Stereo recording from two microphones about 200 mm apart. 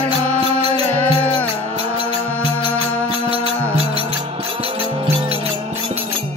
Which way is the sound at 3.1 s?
25° right (ahead or behind).